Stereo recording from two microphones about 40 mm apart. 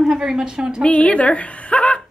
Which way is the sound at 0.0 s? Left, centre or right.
Centre.